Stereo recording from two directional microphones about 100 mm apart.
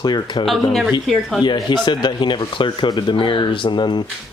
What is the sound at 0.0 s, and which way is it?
Speech, 45° left (ahead or behind).